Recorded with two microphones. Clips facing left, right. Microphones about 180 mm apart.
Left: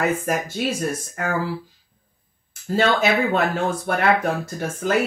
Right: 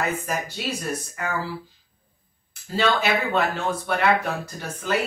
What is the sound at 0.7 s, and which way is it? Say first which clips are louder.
Speech: left 3 dB; 45° left (ahead or behind).